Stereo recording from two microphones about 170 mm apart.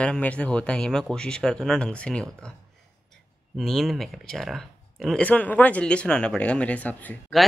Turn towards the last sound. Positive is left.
turn(degrees=10)  # may be behind; listen again after turning